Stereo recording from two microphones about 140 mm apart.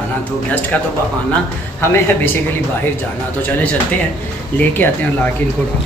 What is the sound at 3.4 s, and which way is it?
Speech, 10° left (ahead or behind).